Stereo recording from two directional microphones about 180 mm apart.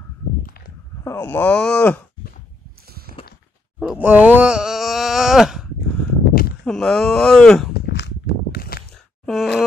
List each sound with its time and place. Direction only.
0.5 s a sound: 55° left (ahead or behind)
1.0 s speech: 10° left (ahead or behind)
3.8 s wail: 5° right (ahead or behind)
6.6 s speech: 5° left (ahead or behind)
7.7 s walk: 70° left (ahead or behind)
9.2 s grunt: centre (ahead or behind)